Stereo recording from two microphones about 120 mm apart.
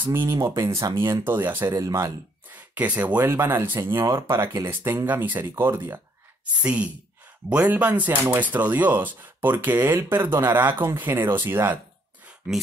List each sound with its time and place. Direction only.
0.0 s speech: 20° right (ahead or behind)
2.5 s speech: 15° right (ahead or behind)
3.9 s speech: 35° right (ahead or behind)
4.4 s speech: 20° right (ahead or behind)
6.6 s speech: 10° right (ahead or behind)